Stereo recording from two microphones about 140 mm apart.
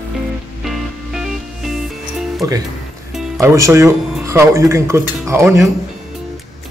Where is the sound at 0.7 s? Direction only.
5° right (ahead or behind).